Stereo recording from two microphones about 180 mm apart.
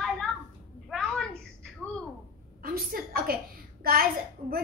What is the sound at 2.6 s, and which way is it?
A woman's voice, 55° right (ahead or behind).